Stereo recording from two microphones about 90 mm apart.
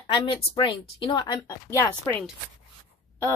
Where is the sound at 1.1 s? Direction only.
50° left (ahead or behind).